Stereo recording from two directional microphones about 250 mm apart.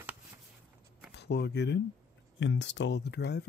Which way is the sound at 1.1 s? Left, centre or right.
Left.